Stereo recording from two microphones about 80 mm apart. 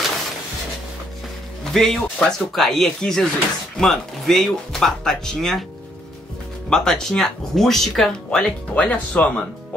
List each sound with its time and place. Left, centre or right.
1.7 s speech: centre
6.7 s speech: centre